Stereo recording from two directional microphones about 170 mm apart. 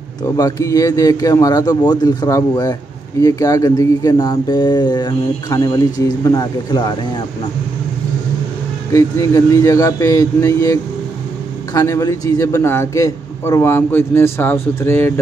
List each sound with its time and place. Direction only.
0.4 s speech: 20° left (ahead or behind)
8.9 s a man's voice: 20° left (ahead or behind)